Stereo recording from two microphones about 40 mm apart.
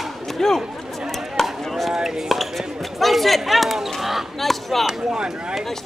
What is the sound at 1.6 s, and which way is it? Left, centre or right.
Chop, centre.